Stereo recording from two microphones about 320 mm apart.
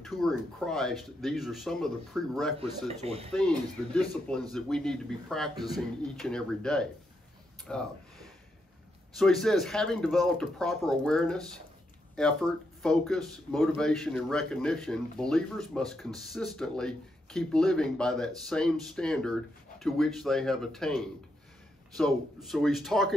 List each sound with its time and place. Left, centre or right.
0.0 s speech: centre
2.9 s speech: centre
3.3 s speech: centre
9.1 s speech: centre